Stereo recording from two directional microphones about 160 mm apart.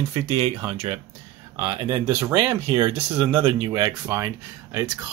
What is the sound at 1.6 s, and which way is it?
Speech, 25° right (ahead or behind).